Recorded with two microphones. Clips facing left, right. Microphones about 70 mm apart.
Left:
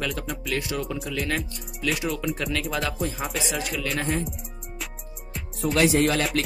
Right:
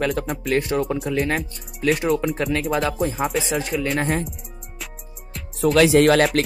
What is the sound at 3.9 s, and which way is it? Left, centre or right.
Speech, right.